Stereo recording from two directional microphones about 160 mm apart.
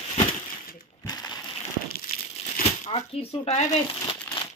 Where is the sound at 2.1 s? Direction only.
65° left (ahead or behind).